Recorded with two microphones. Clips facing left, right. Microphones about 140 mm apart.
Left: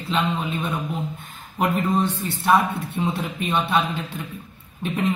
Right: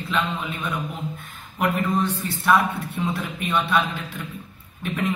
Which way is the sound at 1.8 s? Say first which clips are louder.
Left 1 dB; 25° left (ahead or behind).